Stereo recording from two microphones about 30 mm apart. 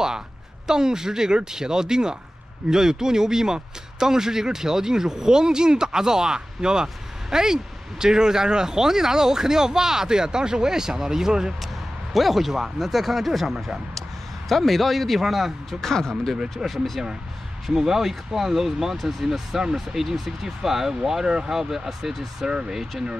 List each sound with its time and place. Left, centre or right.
0.7 s speech: right
11.6 s speech: centre
15.8 s speech: centre
16.6 s speech: centre
17.7 s speech: centre
19.6 s speech: right
20.0 s speech: centre